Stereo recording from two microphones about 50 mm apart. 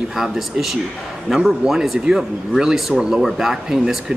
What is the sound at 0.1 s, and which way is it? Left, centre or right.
Speech, centre.